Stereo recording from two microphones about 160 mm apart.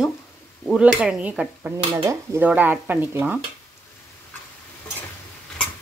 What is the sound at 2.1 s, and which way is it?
Speech, 10° right (ahead or behind).